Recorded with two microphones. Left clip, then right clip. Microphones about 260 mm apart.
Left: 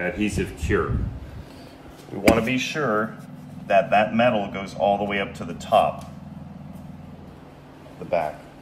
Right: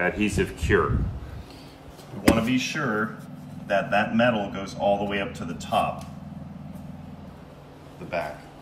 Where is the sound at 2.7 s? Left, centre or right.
Left.